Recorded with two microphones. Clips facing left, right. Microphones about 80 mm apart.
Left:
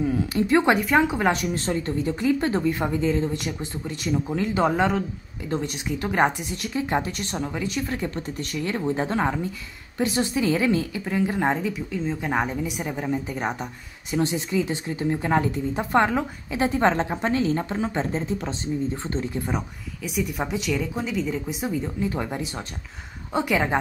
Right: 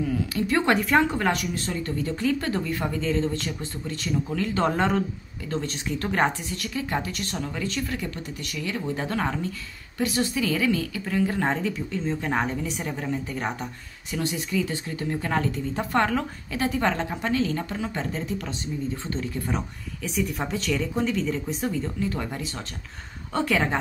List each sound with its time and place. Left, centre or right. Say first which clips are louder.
0.0 s speech: left 3 dB; left
0.7 s speech: left 1 dB; centre
1.2 s speech: left 3 dB; left
4.6 s speech: even; centre
5.5 s speech: left 2 dB; centre
6.5 s speech: left 3 dB; left
7.9 s speech: left 3 dB; left
11.1 s speech: left 1 dB; centre